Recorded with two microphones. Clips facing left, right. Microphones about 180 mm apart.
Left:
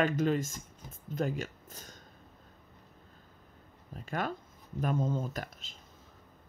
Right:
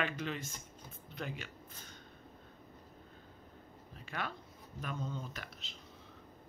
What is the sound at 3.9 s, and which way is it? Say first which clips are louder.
Speech: left 7 dB; 45° left (ahead or behind).